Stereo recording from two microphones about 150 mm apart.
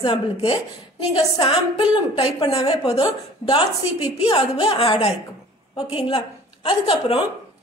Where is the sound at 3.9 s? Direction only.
45° left (ahead or behind).